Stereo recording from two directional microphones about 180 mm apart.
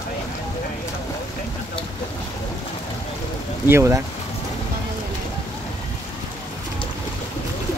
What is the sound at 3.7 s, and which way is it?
Speech, 15° right (ahead or behind).